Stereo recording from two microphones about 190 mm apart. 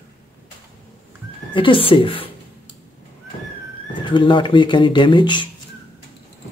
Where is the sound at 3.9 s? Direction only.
25° left (ahead or behind).